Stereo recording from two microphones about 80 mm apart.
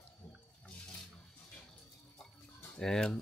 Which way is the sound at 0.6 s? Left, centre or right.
Centre.